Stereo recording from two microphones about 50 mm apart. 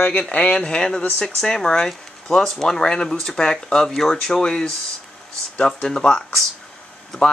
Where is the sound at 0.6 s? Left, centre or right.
Centre.